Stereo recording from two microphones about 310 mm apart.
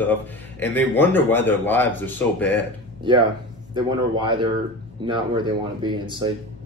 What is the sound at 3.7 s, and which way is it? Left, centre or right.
Speech, centre.